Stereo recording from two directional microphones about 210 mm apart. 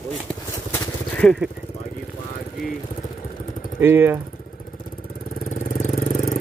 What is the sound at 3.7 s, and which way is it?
Speech, 10° right (ahead or behind).